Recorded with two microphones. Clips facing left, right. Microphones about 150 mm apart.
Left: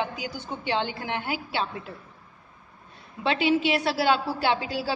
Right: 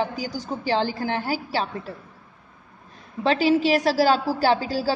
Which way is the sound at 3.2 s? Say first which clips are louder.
Right 4 dB; 35° right (ahead or behind).